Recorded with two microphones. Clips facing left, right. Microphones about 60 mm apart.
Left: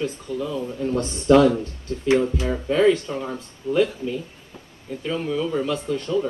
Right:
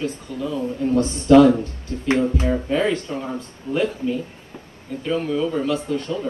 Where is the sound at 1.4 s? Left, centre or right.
Right.